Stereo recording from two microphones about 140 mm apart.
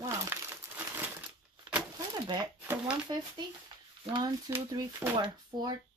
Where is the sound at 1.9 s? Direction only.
25° right (ahead or behind).